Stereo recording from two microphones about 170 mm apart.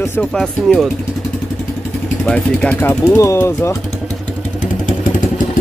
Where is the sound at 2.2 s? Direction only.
5° left (ahead or behind).